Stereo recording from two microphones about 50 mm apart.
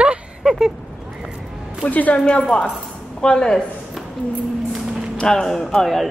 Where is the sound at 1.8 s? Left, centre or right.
Left; by 3.6 s centre.